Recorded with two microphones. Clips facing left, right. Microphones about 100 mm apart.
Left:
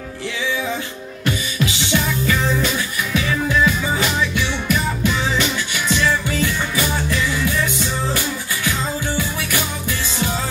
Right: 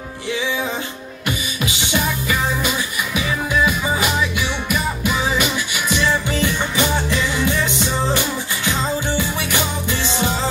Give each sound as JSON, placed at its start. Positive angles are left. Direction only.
{"t": 1.2, "sound": "music", "side_deg": -15}